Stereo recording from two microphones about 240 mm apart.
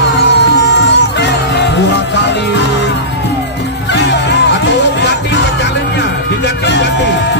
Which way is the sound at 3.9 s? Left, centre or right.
Left.